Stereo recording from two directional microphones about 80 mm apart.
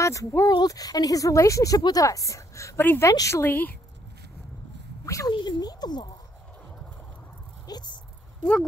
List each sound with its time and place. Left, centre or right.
0.0 s speech: left
0.5 s speech: left
1.8 s speech: left
2.0 s a woman's voice: left
2.8 s a woman's voice: left
3.1 s speech: left
5.0 s speech: left
5.3 s speech: left
7.6 s speech: left